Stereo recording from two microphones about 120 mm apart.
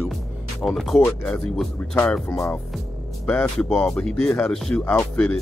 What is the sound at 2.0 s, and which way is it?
Speech, 15° left (ahead or behind).